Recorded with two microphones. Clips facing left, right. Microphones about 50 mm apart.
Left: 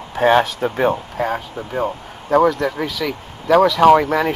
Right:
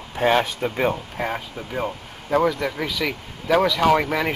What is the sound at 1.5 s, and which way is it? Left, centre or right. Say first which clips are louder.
Speech: left 5 dB; centre.